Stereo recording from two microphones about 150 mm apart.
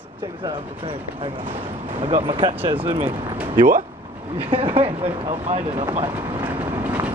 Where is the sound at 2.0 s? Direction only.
50° right (ahead or behind).